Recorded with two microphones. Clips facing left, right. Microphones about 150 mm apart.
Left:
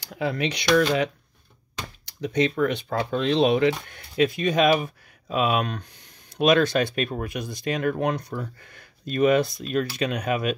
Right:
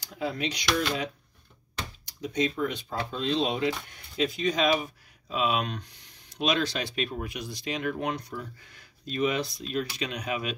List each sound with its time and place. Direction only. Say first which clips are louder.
0.0 s speech: left 5 dB; 70° left (ahead or behind); by 10.5 s 50° left (ahead or behind)